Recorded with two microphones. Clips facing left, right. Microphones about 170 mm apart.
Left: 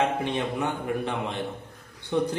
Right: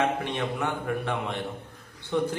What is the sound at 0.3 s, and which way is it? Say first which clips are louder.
A man's voice: left 1 dB; 15° left (ahead or behind).